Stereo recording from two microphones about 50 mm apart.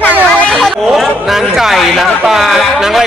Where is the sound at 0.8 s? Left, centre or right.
Centre.